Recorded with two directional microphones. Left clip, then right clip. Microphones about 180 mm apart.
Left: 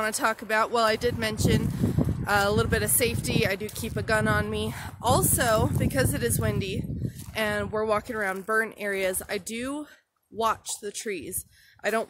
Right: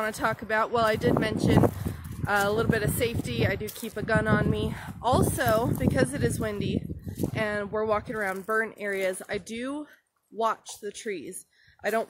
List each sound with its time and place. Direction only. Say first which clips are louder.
0.0 s speech: left 2 dB; 15° left (ahead or behind)